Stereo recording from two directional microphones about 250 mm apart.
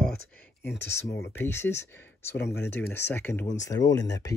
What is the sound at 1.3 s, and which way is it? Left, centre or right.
Speech, centre.